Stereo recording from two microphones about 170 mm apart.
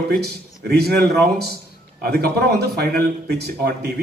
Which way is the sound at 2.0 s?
70° right (ahead or behind).